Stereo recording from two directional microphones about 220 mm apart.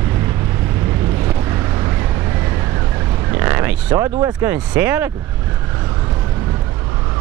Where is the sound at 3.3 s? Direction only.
10° right (ahead or behind).